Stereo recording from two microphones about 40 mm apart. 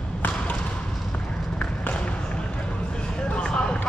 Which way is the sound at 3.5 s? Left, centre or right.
Centre.